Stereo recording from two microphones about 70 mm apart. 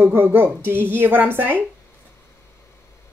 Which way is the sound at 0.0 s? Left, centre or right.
Right.